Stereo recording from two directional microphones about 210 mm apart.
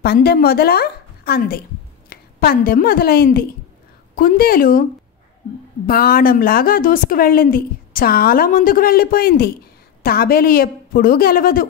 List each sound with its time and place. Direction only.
0.0 s a woman's voice: 50° left (ahead or behind)
5.9 s a woman's voice: 45° left (ahead or behind)